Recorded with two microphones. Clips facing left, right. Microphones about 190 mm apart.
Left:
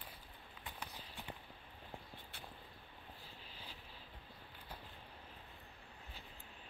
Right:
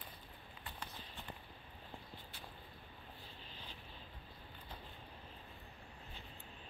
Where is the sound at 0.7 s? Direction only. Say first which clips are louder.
Even; 10° left (ahead or behind).